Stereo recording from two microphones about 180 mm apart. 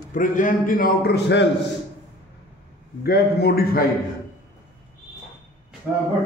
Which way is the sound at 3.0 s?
60° left (ahead or behind).